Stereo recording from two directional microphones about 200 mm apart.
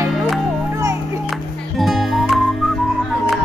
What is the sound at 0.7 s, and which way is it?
Music, 15° right (ahead or behind).